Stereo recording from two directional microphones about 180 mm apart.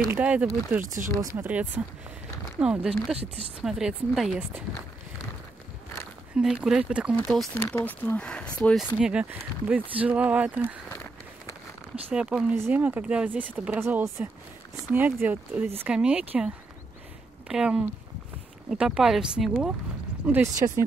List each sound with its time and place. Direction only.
0.1 s speech: 5° right (ahead or behind)
6.3 s speech: 5° right (ahead or behind)
7.5 s speech: 10° left (ahead or behind)
9.0 s speech: 10° right (ahead or behind)
12.1 s speech: 5° right (ahead or behind)
17.5 s speech: 5° right (ahead or behind)
20.6 s speech: 25° right (ahead or behind)